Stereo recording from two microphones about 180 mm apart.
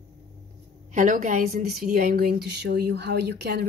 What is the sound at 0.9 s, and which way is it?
A woman's voice, 45° right (ahead or behind).